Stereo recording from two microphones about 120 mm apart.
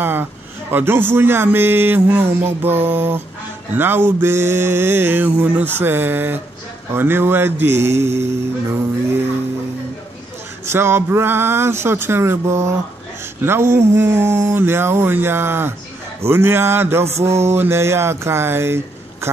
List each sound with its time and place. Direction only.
0.0 s a man's voice: 15° right (ahead or behind)
6.9 s mantra: 20° right (ahead or behind)
10.7 s mantra: 20° right (ahead or behind)
19.2 s a sound: 20° right (ahead or behind)